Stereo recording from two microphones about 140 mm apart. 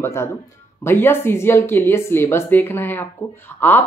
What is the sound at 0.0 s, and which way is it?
Speech, 20° left (ahead or behind).